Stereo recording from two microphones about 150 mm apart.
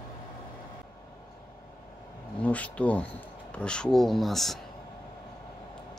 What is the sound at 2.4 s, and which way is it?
Speech, 10° left (ahead or behind).